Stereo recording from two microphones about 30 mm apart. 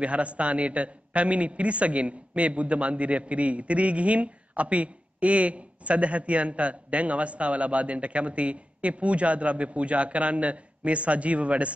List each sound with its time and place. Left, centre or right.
0.0 s a man's voice: right